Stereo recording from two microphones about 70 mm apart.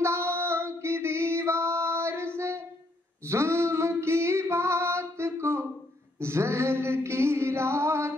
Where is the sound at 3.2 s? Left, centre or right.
Right.